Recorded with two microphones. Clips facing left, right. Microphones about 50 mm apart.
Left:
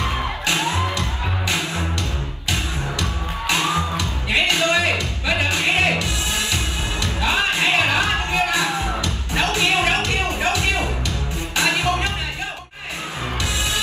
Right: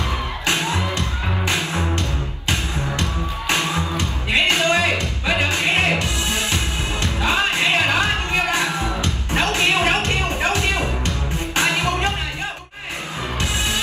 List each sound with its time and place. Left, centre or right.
0.5 s music: right
13.4 s music: right